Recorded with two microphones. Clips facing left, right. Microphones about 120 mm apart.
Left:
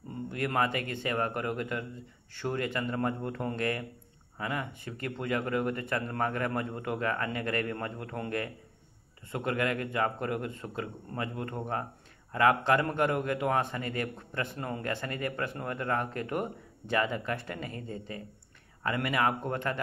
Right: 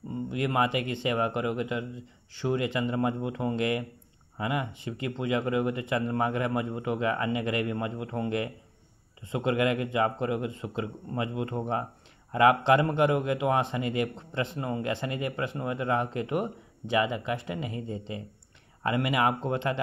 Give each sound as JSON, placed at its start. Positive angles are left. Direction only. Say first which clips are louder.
{"t": 0.3, "sound": "a man's voice", "louder": "right 3 dB", "side_deg": -15}